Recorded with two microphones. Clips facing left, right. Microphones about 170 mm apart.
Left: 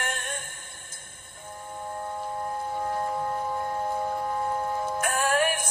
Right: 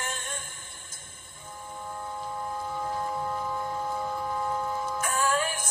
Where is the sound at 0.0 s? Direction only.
60° left (ahead or behind).